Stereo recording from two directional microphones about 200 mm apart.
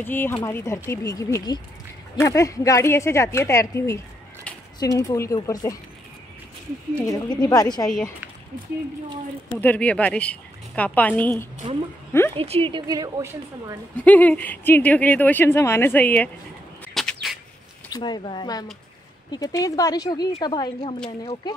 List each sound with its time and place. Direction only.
0.0 s speech: 10° left (ahead or behind)
7.1 s a woman's voice: 15° left (ahead or behind)
7.8 s speech: centre (ahead or behind)
9.6 s speech: 10° left (ahead or behind)
12.4 s a woman's voice: 30° right (ahead or behind)
13.9 s speech: 10° left (ahead or behind)
16.9 s a sound: centre (ahead or behind)
17.9 s a woman's voice: 20° left (ahead or behind)